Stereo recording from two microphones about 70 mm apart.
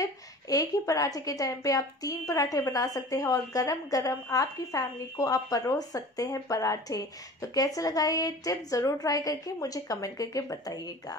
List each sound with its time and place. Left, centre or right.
0.0 s a woman's voice: left